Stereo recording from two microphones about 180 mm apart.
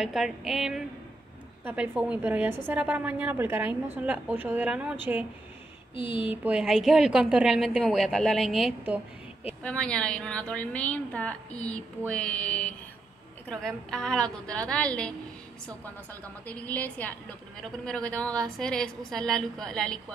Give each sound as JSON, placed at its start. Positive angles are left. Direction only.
{"t": 0.0, "sound": "a woman's voice", "side_deg": 0}
{"t": 5.9, "sound": "speech", "side_deg": 30}
{"t": 6.2, "sound": "a woman's voice", "side_deg": -10}
{"t": 9.6, "sound": "a woman's voice", "side_deg": 5}
{"t": 16.4, "sound": "a woman's voice", "side_deg": 10}